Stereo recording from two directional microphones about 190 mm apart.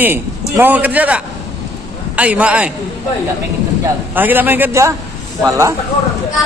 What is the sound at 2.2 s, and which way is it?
Speech, 5° right (ahead or behind).